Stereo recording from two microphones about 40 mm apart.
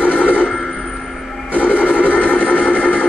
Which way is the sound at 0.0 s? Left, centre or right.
Left.